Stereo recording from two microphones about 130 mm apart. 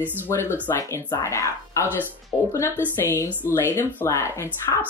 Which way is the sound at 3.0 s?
20° left (ahead or behind).